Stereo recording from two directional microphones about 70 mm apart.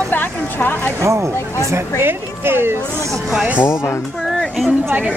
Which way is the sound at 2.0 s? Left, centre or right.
Right.